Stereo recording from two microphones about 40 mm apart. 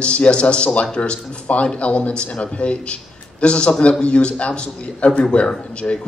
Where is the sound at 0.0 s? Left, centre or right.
Left.